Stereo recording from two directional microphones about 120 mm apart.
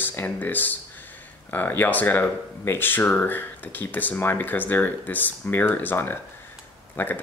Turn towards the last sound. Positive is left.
turn(degrees=15)  # may be behind; listen again after turning